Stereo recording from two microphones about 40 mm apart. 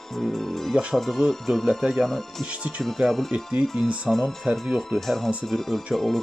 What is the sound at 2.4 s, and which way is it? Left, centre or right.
Speech, right.